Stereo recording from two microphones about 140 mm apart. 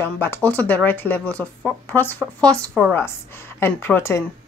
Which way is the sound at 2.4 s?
10° left (ahead or behind).